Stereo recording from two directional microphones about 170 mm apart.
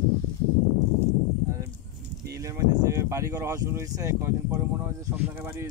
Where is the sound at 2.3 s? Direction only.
20° right (ahead or behind).